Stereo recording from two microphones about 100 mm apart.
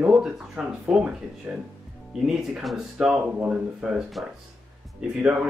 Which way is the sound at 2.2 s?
5° right (ahead or behind).